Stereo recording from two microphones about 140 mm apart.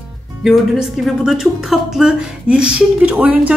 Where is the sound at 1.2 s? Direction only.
5° right (ahead or behind).